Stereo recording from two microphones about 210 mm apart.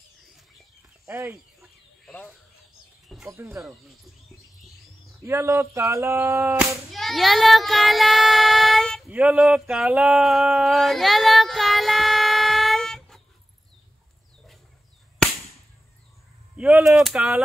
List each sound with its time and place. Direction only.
1.0 s a sound: 10° right (ahead or behind)
2.0 s speech: centre (ahead or behind)
3.3 s speech: 15° right (ahead or behind)
3.5 s speech: centre (ahead or behind)
5.2 s speech: 15° right (ahead or behind)
6.9 s child singing: centre (ahead or behind)
16.5 s speech: 5° right (ahead or behind)